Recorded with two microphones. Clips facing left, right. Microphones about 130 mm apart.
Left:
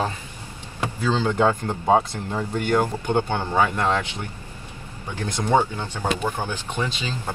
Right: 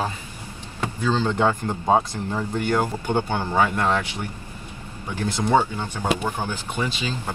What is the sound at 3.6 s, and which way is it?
Speech, 15° left (ahead or behind).